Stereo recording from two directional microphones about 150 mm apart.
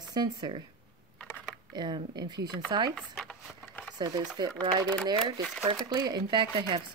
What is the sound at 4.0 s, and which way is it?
A woman's voice, 30° right (ahead or behind).